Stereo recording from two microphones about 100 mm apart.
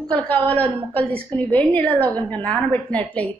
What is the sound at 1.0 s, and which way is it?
Speech, 65° right (ahead or behind).